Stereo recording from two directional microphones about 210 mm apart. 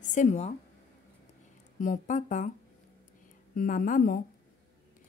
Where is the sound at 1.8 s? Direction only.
35° left (ahead or behind).